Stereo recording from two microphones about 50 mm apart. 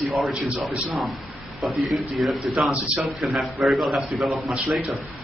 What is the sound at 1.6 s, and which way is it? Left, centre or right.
A man's voice, centre.